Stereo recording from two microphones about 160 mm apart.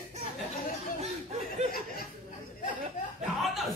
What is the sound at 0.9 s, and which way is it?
Chuckle, 40° right (ahead or behind).